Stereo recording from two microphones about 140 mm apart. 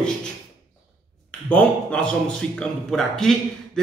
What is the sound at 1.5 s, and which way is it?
A man's voice, 10° left (ahead or behind).